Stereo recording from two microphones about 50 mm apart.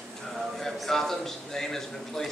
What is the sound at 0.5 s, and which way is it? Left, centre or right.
A man's voice, centre.